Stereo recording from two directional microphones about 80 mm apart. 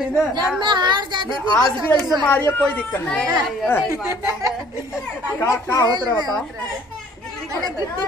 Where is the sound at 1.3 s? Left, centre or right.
Left.